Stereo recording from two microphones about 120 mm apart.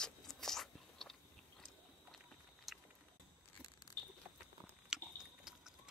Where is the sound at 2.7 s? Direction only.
Centre (ahead or behind).